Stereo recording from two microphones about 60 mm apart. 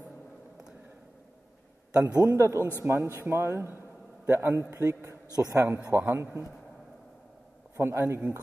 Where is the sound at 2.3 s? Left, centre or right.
Right.